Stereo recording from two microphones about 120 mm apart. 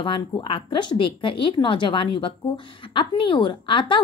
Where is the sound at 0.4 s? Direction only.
45° left (ahead or behind).